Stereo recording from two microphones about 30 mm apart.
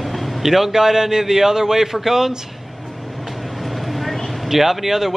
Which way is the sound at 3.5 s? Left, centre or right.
Centre.